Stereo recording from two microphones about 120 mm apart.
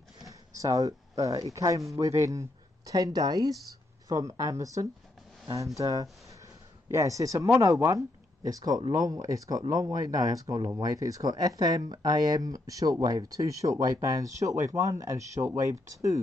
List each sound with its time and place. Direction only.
0.2 s speech: 30° right (ahead or behind)